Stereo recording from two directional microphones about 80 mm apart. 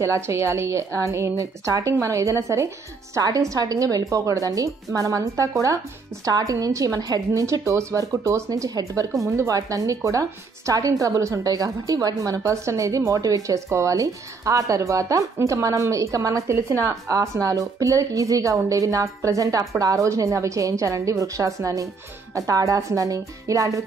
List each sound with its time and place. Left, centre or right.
0.0 s a woman's voice: right